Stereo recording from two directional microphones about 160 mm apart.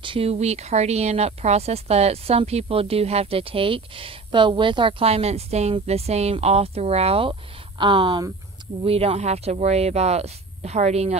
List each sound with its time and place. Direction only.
0.0 s speech: 35° right (ahead or behind)